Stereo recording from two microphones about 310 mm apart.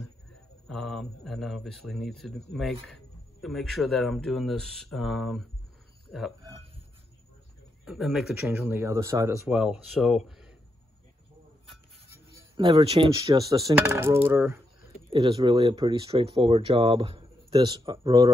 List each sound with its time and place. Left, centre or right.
0.7 s speech: centre
7.8 s speech: centre
12.5 s speech: centre
15.0 s speech: centre